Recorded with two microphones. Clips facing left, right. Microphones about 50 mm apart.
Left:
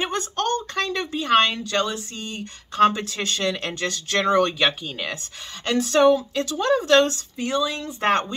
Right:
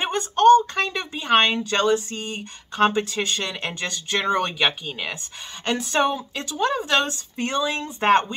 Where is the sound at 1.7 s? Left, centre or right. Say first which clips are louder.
Right 4 dB; right.